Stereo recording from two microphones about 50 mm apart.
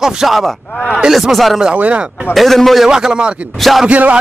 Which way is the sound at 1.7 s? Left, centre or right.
Right.